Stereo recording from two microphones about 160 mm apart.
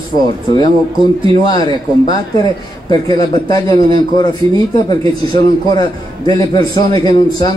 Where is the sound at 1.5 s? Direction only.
25° left (ahead or behind).